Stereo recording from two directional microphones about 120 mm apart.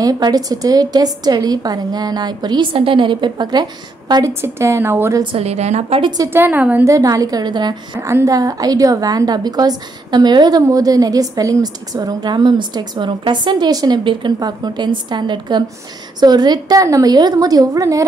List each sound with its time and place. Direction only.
0.0 s a woman's voice: 30° right (ahead or behind)
4.1 s a woman's voice: 25° right (ahead or behind)
5.2 s a woman's voice: 55° right (ahead or behind)
6.0 s a woman's voice: 30° right (ahead or behind)
6.3 s a woman's voice: 15° right (ahead or behind)
6.9 s a woman's voice: 30° right (ahead or behind)
8.0 s a woman's voice: 25° right (ahead or behind)